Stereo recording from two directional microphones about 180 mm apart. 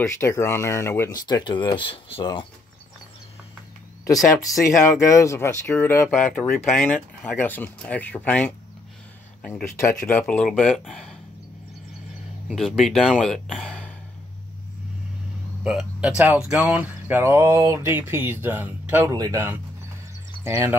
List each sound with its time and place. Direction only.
0.0 s speech: 15° left (ahead or behind)
4.4 s speech: 20° left (ahead or behind)
9.8 s speech: 15° left (ahead or behind)
12.4 s speech: centre (ahead or behind)
15.6 s speech: 5° right (ahead or behind)